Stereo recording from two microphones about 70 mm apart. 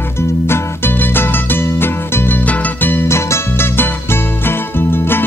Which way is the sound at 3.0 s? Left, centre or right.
Left.